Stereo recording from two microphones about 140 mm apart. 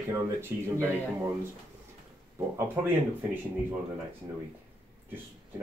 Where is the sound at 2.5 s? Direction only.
15° right (ahead or behind).